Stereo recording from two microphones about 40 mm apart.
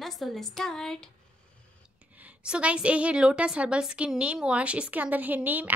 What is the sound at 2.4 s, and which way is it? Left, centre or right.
A woman's voice, right.